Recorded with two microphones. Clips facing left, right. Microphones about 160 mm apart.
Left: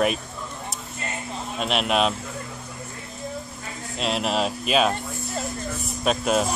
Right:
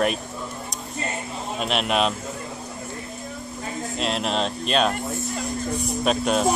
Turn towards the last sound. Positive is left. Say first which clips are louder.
# right 1 dB
turn(degrees=0)  # may be behind; listen again after turning